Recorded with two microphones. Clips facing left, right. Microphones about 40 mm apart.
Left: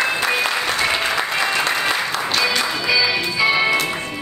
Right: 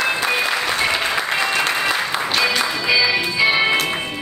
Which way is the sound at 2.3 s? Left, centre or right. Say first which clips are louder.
Right 1 dB; centre.